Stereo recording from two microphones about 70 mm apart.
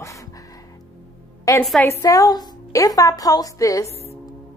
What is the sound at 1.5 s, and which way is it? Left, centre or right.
A woman's voice, left.